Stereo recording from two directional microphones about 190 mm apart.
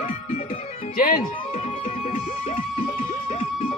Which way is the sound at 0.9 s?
45° left (ahead or behind).